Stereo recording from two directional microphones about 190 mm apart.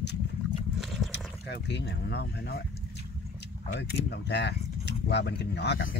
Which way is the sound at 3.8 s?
60° left (ahead or behind).